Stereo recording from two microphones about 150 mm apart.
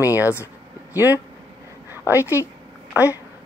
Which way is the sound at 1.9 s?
15° right (ahead or behind).